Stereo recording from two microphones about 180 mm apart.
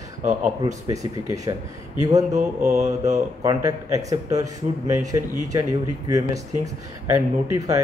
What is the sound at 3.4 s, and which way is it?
Speech, 20° right (ahead or behind).